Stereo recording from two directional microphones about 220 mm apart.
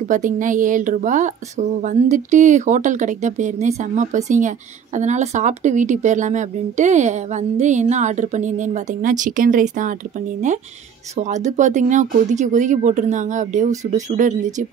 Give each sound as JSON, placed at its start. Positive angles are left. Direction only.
{"t": 0.1, "sound": "a woman's voice", "side_deg": -35}